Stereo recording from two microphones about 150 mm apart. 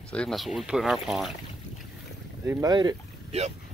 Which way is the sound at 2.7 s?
30° right (ahead or behind).